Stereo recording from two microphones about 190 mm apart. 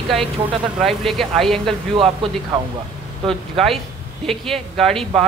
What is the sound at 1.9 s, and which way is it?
Speech, 25° right (ahead or behind).